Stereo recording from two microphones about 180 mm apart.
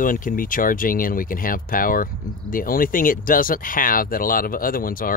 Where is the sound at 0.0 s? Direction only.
50° left (ahead or behind).